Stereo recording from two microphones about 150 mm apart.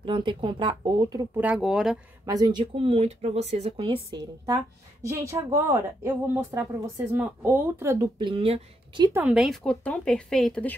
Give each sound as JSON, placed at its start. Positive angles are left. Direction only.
{"t": 0.0, "sound": "speech", "side_deg": -35}
{"t": 1.4, "sound": "speech", "side_deg": -5}
{"t": 2.2, "sound": "speech", "side_deg": -25}
{"t": 8.2, "sound": "speech", "side_deg": -35}
{"t": 9.1, "sound": "speech", "side_deg": -10}